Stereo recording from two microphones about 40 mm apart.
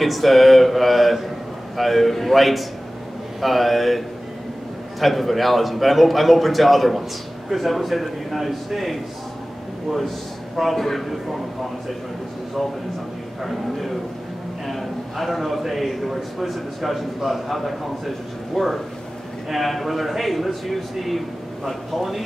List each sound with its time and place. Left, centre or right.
0.0 s a man's voice: centre
5.0 s a man's voice: centre
10.5 s a man's voice: centre
13.4 s a man's voice: centre